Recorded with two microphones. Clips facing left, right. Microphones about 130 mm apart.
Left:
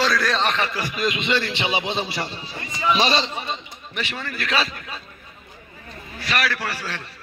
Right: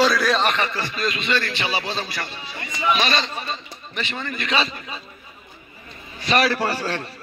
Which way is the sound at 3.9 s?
10° left (ahead or behind).